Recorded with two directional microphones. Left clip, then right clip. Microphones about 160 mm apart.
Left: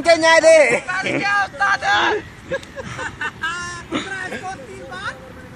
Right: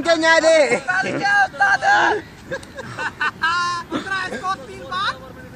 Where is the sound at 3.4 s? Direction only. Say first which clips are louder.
Right 9 dB; 70° left (ahead or behind).